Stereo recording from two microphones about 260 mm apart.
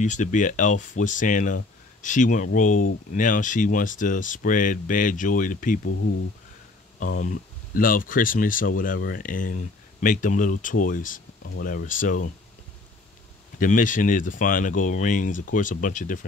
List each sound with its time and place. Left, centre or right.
0.0 s speech: left
5.9 s speech: left
7.0 s speech: left
13.6 s speech: left